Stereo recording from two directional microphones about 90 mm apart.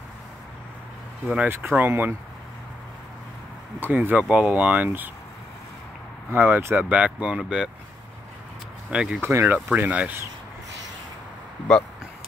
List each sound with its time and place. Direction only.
1.2 s speech: 10° right (ahead or behind)
1.8 s speech: 25° right (ahead or behind)
3.8 s speech: 20° right (ahead or behind)
4.2 s speech: 10° right (ahead or behind)
6.3 s speech: 25° right (ahead or behind)
8.9 s speech: 10° right (ahead or behind)
9.2 s speech: 30° right (ahead or behind)
9.7 s speech: 15° right (ahead or behind)
11.7 s speech: 5° left (ahead or behind)